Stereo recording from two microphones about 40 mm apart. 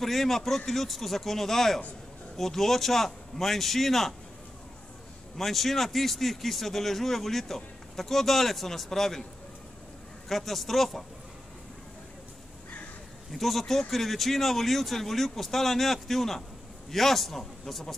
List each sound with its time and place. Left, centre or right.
0.0 s a man's voice: centre
5.4 s a man's voice: centre
10.2 s a man's voice: centre
13.3 s a man's voice: centre